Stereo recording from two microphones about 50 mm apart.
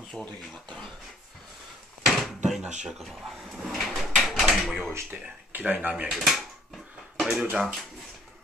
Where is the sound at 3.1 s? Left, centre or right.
Centre.